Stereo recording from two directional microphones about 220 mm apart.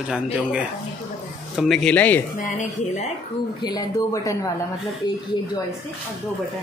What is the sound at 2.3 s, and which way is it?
Speech, 35° left (ahead or behind).